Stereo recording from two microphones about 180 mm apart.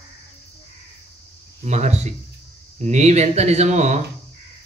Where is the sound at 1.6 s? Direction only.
40° right (ahead or behind).